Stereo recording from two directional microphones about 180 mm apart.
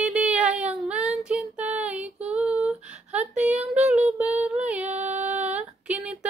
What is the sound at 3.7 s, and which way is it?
Female singing, 5° right (ahead or behind).